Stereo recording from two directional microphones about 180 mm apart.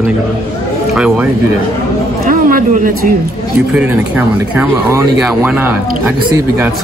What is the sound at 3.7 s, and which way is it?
Speech, 5° right (ahead or behind).